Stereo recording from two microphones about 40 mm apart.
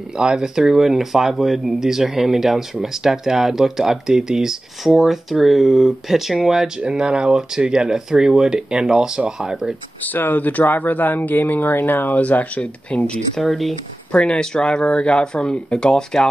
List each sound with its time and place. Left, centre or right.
0.2 s speech: centre
4.8 s speech: centre
6.8 s speech: right
10.0 s speech: left
12.2 s speech: left
12.9 s speech: left
13.4 s speech: centre
14.1 s speech: left